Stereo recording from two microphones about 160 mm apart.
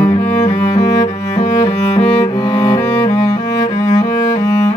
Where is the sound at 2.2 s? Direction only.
25° left (ahead or behind).